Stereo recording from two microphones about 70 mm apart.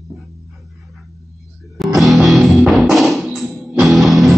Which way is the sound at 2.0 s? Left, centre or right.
Centre.